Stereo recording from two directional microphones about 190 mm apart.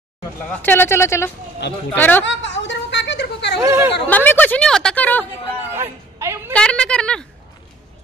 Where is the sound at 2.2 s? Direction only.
75° left (ahead or behind).